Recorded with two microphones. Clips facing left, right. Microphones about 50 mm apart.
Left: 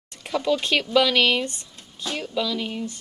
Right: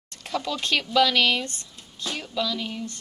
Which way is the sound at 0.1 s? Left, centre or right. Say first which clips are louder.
Left 6 dB; centre.